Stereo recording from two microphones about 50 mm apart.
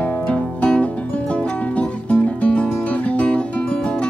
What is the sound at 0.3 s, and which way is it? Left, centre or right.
Music, left.